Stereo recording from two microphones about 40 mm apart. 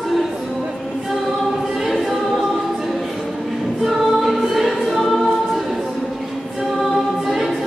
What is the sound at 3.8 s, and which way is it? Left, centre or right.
Choir, centre.